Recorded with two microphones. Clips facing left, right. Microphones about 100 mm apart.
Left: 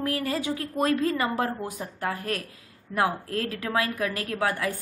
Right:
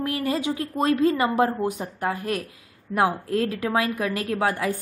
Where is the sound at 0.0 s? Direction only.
25° right (ahead or behind).